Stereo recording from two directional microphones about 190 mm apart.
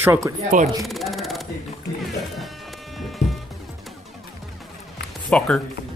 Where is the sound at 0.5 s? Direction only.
45° right (ahead or behind).